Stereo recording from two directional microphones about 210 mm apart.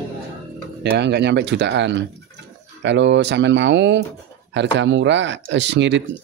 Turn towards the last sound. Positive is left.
turn(degrees=-60)  # may be behind; listen again after turning